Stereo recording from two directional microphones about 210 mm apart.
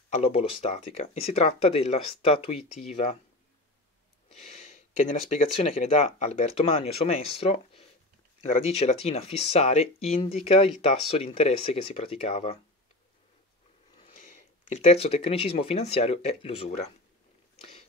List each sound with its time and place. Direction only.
0.1 s speech: 30° left (ahead or behind)
4.3 s a sound: 35° left (ahead or behind)
5.3 s speech: 30° left (ahead or behind)
13.9 s speech: 30° left (ahead or behind)